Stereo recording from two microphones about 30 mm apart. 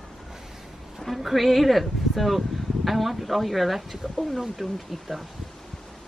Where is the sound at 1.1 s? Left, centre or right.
Centre.